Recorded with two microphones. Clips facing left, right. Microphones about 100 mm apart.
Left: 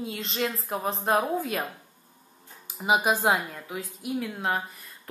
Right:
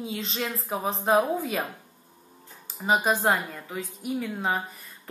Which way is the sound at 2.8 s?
10° left (ahead or behind).